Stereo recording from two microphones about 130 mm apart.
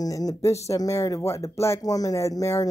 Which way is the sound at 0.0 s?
30° left (ahead or behind).